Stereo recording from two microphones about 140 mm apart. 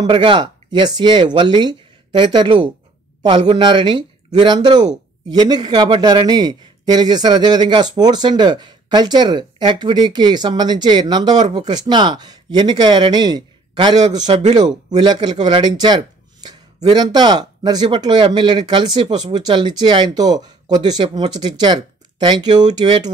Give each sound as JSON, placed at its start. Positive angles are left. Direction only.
{"t": 0.0, "sound": "speech", "side_deg": -35}